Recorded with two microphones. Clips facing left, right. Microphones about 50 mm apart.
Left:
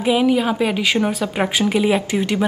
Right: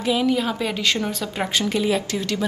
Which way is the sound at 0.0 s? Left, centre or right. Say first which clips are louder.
Left 4 dB; centre.